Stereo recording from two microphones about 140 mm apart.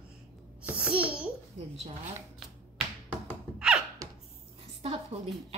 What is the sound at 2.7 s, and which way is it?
Finger snapping, 5° right (ahead or behind).